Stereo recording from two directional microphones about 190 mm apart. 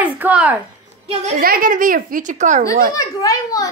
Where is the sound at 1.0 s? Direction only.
30° right (ahead or behind).